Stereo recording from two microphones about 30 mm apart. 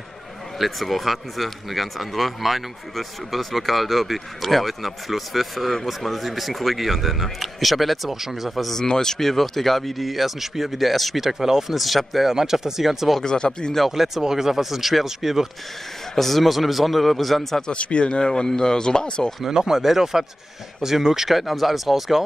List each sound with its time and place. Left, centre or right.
0.6 s speech: centre
8.8 s speech: centre
10.7 s speech: centre
11.1 s speech: centre
11.7 s speech: centre
12.3 s speech: centre
13.2 s speech: left
13.8 s speech: centre
16.2 s speech: centre
17.7 s speech: left
18.3 s speech: centre
19.5 s speech: centre
21.3 s speech: centre